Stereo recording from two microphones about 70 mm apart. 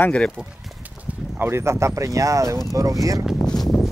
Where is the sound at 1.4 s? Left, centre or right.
Right.